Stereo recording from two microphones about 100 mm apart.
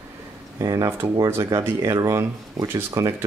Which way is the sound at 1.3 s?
30° right (ahead or behind).